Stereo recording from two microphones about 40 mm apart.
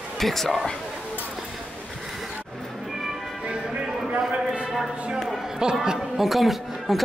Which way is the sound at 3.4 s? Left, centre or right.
Right.